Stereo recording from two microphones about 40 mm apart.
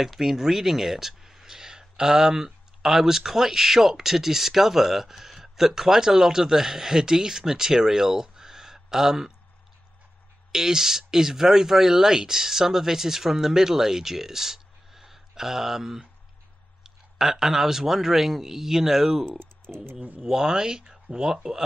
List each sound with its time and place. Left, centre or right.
0.0 s speech: centre
10.5 s speech: centre
19.2 s speech: centre
20.2 s speech: centre